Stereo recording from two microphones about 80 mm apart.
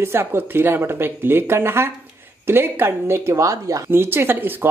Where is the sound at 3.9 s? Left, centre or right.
Right.